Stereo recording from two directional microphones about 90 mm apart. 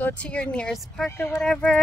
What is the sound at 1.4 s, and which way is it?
Speech, 10° left (ahead or behind).